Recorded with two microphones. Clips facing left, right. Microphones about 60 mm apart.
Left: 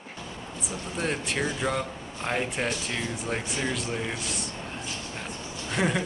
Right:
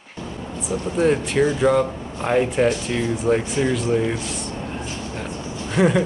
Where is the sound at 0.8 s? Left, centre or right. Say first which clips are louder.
Right 11 dB; centre.